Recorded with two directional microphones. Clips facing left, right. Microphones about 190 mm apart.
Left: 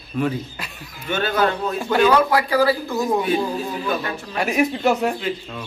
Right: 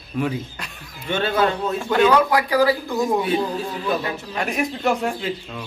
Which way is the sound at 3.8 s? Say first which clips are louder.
Right 1 dB; 10° right (ahead or behind).